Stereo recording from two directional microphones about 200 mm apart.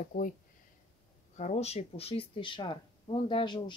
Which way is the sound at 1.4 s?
35° left (ahead or behind).